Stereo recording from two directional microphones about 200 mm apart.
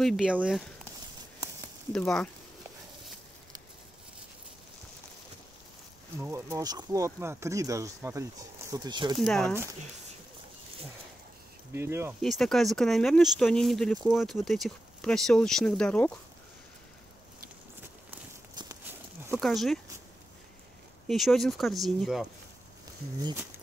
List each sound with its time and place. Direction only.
0.0 s speech: centre (ahead or behind)
1.9 s speech: 5° left (ahead or behind)
6.1 s speech: 15° right (ahead or behind)
9.2 s speech: centre (ahead or behind)
11.7 s speech: 10° right (ahead or behind)
12.2 s speech: centre (ahead or behind)
18.5 s walk: 20° right (ahead or behind)
18.9 s horse: 10° right (ahead or behind)
19.4 s speech: centre (ahead or behind)
21.1 s speech: centre (ahead or behind)